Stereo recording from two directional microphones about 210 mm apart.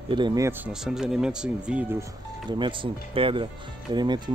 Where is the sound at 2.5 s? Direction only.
25° right (ahead or behind).